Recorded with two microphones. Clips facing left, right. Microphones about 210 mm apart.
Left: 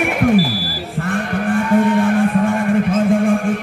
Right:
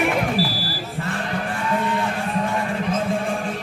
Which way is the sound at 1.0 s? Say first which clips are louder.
Left 8 dB; 55° left (ahead or behind).